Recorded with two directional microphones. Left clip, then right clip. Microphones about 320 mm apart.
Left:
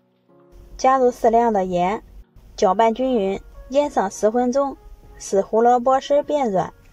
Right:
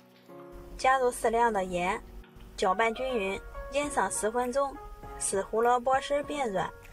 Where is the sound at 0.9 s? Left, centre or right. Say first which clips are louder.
Left 10 dB; centre.